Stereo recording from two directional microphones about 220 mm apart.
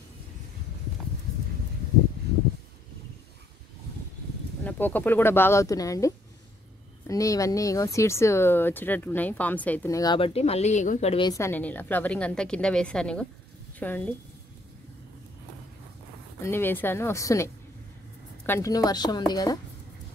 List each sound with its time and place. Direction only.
4.6 s speech: 10° left (ahead or behind)
16.4 s speech: 10° left (ahead or behind)